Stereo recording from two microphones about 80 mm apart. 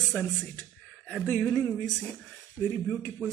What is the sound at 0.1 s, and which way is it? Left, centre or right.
Speech, centre.